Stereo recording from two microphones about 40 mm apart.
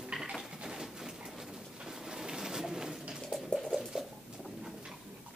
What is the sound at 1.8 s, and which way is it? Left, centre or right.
Pigeon, centre.